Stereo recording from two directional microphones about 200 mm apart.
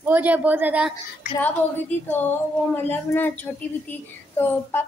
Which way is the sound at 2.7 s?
10° left (ahead or behind).